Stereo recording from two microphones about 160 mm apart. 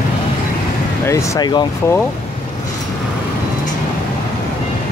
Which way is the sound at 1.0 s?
20° left (ahead or behind).